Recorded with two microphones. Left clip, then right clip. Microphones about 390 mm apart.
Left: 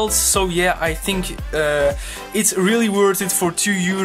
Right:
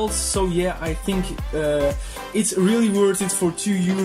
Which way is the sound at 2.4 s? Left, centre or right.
Centre.